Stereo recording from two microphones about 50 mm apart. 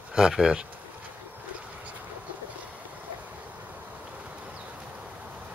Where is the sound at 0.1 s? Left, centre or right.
Centre.